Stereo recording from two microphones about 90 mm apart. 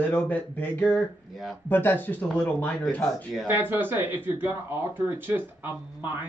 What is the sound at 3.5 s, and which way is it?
Speech, 20° right (ahead or behind).